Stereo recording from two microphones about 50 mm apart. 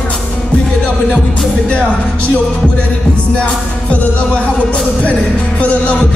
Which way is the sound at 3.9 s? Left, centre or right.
Left.